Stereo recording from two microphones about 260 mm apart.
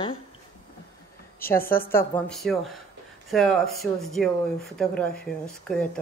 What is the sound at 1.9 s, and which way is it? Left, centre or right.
Speech, centre.